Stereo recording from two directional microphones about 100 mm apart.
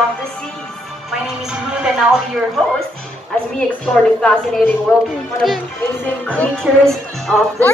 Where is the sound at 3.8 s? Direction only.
10° left (ahead or behind).